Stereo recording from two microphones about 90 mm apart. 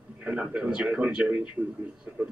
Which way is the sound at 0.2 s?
15° right (ahead or behind).